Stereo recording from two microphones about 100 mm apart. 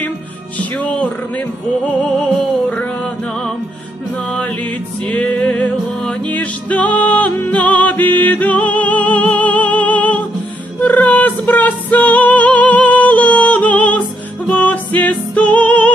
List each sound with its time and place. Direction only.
0.6 s music: 15° left (ahead or behind)
5.0 s music: 15° left (ahead or behind)